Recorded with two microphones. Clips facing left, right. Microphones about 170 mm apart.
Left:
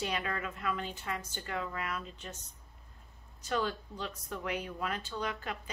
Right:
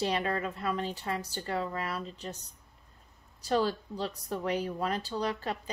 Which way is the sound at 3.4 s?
35° right (ahead or behind).